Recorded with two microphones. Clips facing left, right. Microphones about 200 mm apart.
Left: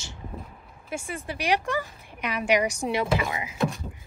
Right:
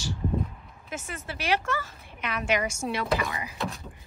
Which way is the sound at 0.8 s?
10° left (ahead or behind).